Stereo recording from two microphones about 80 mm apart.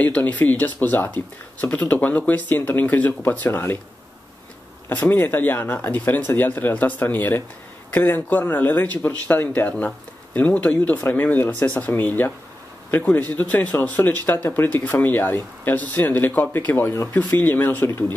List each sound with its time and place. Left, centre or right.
0.0 s speech: centre
4.8 s speech: left